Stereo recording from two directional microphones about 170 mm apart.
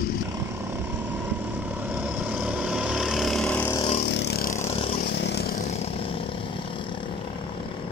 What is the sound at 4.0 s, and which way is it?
Vehicle, 80° left.